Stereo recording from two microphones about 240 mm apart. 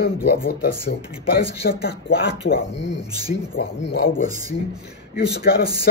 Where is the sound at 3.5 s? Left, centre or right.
Left.